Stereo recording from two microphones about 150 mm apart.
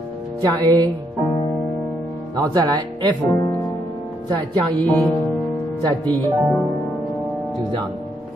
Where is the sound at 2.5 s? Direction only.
30° right (ahead or behind).